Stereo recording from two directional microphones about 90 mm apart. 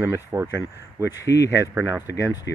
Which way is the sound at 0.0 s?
25° right (ahead or behind).